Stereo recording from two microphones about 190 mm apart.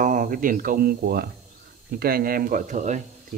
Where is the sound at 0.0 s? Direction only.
45° right (ahead or behind).